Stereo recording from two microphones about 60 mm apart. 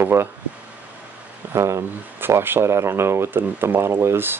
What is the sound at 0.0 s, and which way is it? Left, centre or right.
Speech, right.